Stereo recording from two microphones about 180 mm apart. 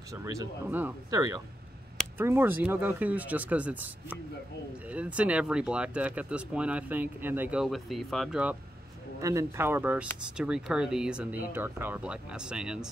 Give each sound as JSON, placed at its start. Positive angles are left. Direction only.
{"t": 0.1, "sound": "speech", "side_deg": -15}
{"t": 9.2, "sound": "speech", "side_deg": -15}